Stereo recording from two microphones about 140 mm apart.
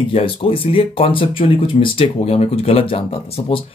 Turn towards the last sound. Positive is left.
turn(degrees=40)  # may be behind; listen again after turning